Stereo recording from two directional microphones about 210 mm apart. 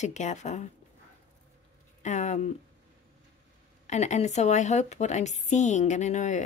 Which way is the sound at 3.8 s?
35° left (ahead or behind).